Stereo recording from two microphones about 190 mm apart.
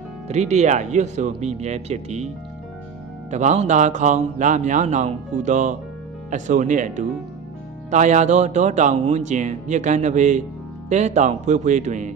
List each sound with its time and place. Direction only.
0.3 s speech: 35° right (ahead or behind)
3.3 s speech: 40° right (ahead or behind)